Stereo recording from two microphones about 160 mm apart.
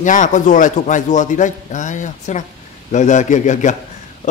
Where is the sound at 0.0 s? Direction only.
50° left (ahead or behind).